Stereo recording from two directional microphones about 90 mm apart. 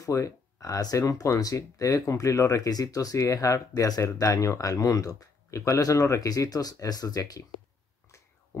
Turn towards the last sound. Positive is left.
turn(degrees=40)  # may be behind; listen again after turning